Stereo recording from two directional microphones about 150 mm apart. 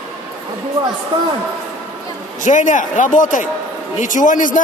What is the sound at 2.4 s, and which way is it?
A man's voice, 55° left (ahead or behind).